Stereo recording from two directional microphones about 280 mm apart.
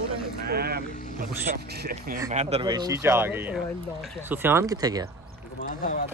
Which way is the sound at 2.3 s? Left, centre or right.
Right.